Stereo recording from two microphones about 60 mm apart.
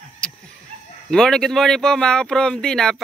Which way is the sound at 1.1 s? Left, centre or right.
Centre.